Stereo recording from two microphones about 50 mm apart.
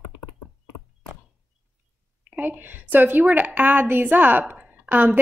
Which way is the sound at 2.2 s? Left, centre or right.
Right.